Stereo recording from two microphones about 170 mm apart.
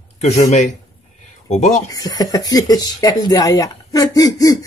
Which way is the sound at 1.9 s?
25° left (ahead or behind).